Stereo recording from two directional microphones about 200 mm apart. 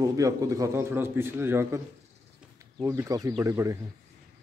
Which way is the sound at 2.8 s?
15° right (ahead or behind).